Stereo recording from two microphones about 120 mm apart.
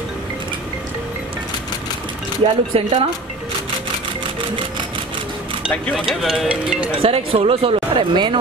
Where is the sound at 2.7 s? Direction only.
50° right (ahead or behind).